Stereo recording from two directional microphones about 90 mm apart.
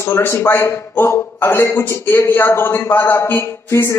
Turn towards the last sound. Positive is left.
turn(degrees=30)  # may be behind; listen again after turning